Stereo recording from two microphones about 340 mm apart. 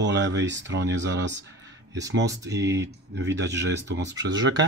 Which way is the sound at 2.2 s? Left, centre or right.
Centre.